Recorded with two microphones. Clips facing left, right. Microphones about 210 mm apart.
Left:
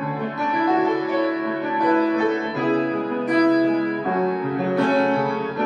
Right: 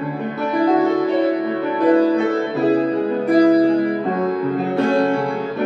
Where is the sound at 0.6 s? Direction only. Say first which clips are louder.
Right 4 dB; 30° right (ahead or behind).